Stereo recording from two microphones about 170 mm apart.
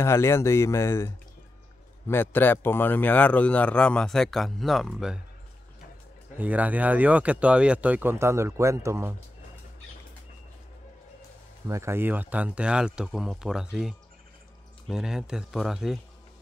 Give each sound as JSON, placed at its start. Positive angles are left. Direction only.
{"t": 0.0, "sound": "a man's voice", "side_deg": 15}
{"t": 6.3, "sound": "speech", "side_deg": -10}
{"t": 11.6, "sound": "speech", "side_deg": -15}